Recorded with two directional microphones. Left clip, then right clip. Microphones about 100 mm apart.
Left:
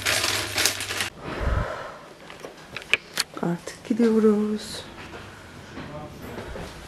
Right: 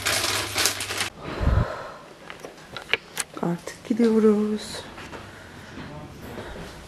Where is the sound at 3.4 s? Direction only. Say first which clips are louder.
Even; 15° right (ahead or behind).